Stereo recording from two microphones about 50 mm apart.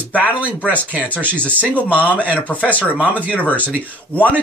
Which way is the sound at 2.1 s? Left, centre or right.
Right.